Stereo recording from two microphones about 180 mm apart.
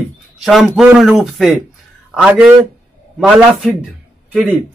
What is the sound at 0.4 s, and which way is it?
A man's voice, centre (ahead or behind).